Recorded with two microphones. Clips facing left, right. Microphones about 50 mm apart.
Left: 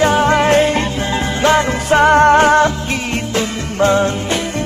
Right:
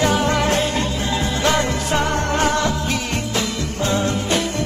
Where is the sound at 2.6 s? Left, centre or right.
Left.